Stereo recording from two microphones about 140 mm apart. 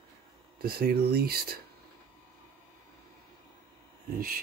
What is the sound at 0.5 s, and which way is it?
Speech, 90° right.